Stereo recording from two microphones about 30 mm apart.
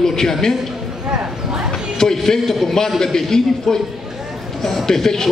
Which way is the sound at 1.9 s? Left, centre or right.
Centre.